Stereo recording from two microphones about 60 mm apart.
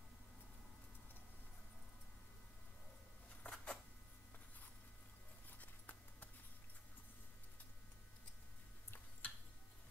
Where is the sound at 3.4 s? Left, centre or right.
Centre.